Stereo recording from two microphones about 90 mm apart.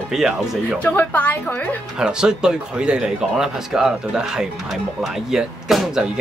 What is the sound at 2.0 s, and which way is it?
Speech, 10° right (ahead or behind).